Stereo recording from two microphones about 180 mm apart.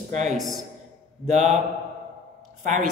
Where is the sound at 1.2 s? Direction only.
40° right (ahead or behind).